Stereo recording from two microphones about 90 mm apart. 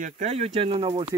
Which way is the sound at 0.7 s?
85° right.